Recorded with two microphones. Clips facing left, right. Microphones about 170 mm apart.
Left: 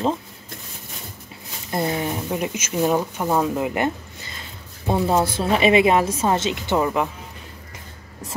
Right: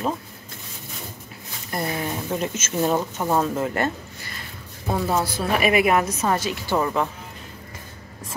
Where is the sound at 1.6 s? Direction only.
25° left (ahead or behind).